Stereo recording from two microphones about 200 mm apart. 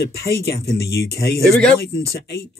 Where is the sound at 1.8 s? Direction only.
50° left (ahead or behind).